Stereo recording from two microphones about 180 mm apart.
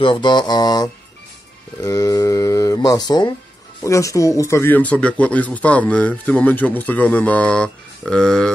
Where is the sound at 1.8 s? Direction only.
15° left (ahead or behind).